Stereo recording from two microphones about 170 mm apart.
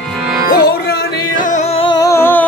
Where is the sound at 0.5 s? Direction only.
60° left (ahead or behind).